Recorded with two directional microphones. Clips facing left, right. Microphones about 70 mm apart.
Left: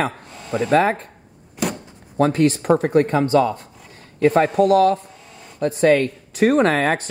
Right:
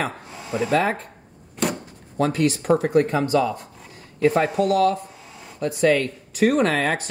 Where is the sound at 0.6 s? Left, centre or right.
Left.